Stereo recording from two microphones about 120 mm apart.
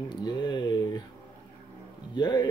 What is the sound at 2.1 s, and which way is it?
Music, 40° left (ahead or behind).